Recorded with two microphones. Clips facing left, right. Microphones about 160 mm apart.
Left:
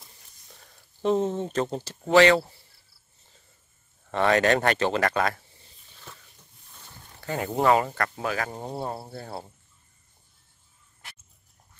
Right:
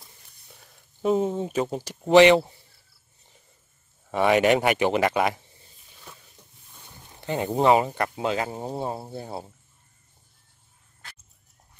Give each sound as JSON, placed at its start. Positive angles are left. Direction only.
{"t": 0.0, "sound": "a sound", "side_deg": -5}
{"t": 2.0, "sound": "speech", "side_deg": -20}
{"t": 4.1, "sound": "speech", "side_deg": -15}
{"t": 7.1, "sound": "speech", "side_deg": -20}
{"t": 8.5, "sound": "speech", "side_deg": -5}